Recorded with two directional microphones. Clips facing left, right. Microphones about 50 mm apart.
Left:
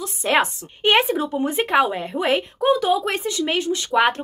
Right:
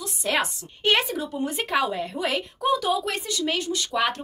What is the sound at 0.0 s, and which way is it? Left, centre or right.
Speech, left.